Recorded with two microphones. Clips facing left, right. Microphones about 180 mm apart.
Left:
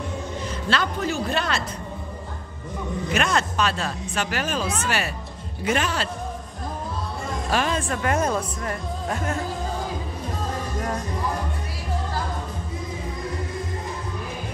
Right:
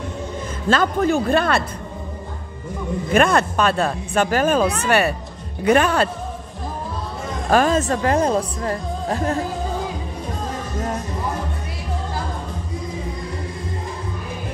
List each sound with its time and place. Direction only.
0.7 s speech: 50° right (ahead or behind)
3.1 s a man's voice: 55° right (ahead or behind)
7.4 s speech: 45° right (ahead or behind)